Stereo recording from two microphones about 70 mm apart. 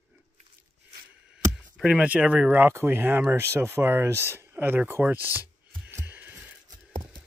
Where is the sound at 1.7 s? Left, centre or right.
Centre.